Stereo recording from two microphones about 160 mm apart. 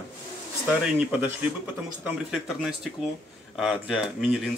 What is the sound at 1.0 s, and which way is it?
A man's voice, 10° right (ahead or behind).